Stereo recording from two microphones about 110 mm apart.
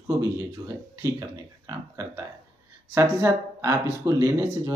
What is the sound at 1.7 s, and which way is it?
Speech, 30° right (ahead or behind).